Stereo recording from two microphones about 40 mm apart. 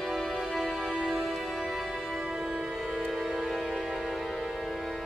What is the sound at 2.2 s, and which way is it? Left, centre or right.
Music, centre.